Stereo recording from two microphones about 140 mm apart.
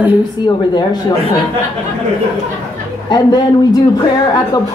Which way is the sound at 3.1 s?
30° left (ahead or behind).